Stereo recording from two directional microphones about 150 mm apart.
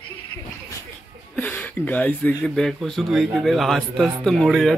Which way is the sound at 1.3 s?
10° left (ahead or behind).